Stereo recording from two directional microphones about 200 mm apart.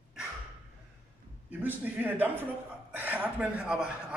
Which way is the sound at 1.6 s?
10° right (ahead or behind).